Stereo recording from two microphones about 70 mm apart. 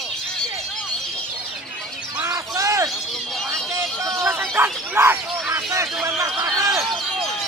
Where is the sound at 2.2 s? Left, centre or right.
Right.